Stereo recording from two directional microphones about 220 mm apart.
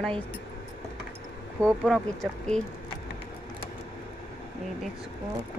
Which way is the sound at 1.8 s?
Centre (ahead or behind).